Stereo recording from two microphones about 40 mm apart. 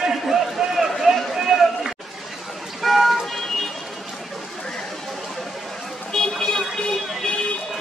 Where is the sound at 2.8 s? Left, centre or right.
Centre.